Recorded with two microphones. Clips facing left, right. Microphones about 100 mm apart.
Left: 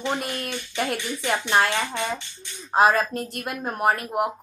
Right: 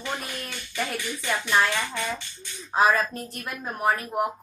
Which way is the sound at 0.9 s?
25° left (ahead or behind).